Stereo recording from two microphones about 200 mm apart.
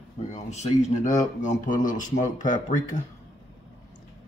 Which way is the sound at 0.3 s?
35° left (ahead or behind).